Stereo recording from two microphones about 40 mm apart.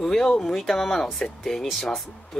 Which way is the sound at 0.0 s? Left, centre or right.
Centre.